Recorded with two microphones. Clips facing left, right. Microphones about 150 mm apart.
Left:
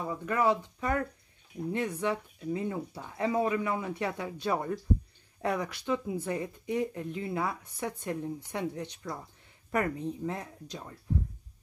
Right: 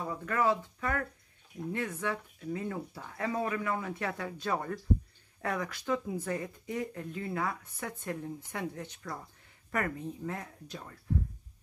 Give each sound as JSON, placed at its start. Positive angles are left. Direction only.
{"t": 0.1, "sound": "speech", "side_deg": 15}